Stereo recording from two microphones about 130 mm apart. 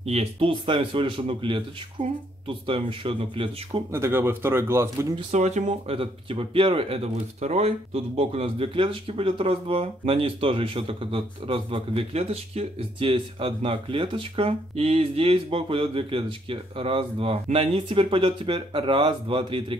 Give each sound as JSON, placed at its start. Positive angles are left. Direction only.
{"t": 0.0, "sound": "speech", "side_deg": -55}
{"t": 3.9, "sound": "speech", "side_deg": -20}
{"t": 5.3, "sound": "speech", "side_deg": -60}